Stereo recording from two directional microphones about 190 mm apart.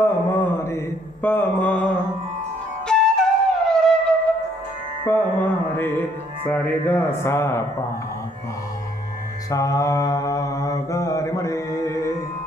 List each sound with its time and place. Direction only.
0.0 s mantra: 10° left (ahead or behind)
2.9 s flute: 5° left (ahead or behind)
5.0 s music: 10° left (ahead or behind)
9.5 s mantra: 20° left (ahead or behind)